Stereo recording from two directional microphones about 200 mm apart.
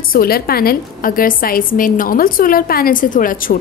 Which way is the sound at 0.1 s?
50° left (ahead or behind).